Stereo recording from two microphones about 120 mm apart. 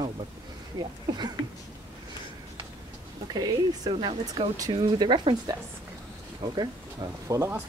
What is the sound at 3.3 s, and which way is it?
Speech, 35° right (ahead or behind).